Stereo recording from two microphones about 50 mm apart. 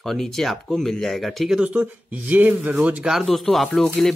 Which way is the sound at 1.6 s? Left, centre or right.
Right.